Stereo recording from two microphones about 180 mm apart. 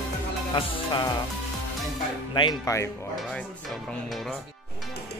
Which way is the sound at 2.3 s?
20° left (ahead or behind).